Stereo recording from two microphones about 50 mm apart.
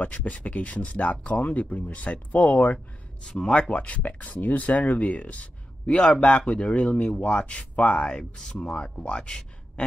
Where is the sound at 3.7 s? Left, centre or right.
Left.